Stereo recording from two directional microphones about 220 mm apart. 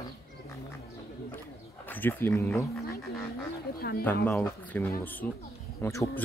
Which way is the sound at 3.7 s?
45° left (ahead or behind).